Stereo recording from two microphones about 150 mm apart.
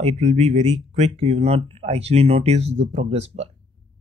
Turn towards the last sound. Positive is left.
turn(degrees=-45)  # may be behind; listen again after turning